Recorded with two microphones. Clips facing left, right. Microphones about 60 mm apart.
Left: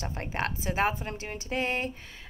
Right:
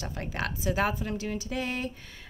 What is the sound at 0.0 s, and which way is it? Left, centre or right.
A woman's voice, left.